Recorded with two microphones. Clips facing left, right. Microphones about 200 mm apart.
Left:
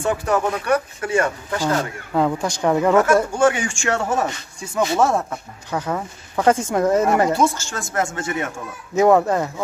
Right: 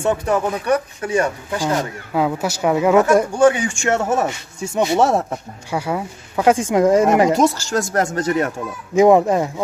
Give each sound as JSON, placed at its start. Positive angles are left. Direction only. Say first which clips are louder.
{"t": 0.0, "sound": "speech", "louder": "right 2 dB", "side_deg": -20}
{"t": 5.7, "sound": "speech", "louder": "right 2 dB", "side_deg": -10}
{"t": 7.3, "sound": "speech", "louder": "right 4 dB", "side_deg": -40}
{"t": 8.9, "sound": "speech", "louder": "right 3 dB", "side_deg": -15}